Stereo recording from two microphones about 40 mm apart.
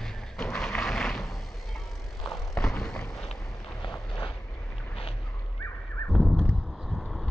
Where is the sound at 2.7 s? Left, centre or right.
Left.